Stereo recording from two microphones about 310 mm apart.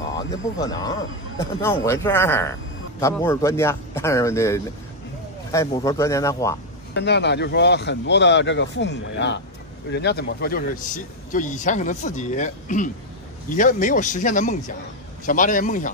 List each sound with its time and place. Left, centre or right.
0.3 s a man's voice: centre
6.9 s a man's voice: left